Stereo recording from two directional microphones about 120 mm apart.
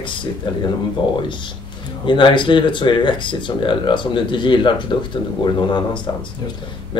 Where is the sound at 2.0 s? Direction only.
45° left (ahead or behind).